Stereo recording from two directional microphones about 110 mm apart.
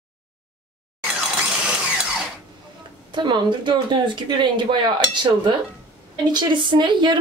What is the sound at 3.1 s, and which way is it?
Speech, 45° right (ahead or behind).